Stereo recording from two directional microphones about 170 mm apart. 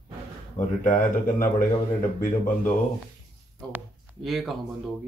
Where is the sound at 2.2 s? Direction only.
55° left (ahead or behind).